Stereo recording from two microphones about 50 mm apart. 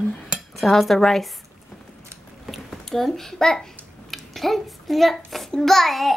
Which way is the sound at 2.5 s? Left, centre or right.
Centre.